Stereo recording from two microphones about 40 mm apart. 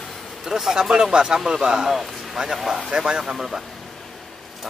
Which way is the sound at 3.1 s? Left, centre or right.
Centre.